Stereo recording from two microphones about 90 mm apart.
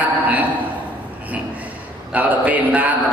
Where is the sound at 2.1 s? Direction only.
15° right (ahead or behind).